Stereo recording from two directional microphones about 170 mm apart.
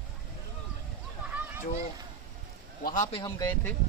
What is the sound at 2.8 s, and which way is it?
Speech, 50° left (ahead or behind).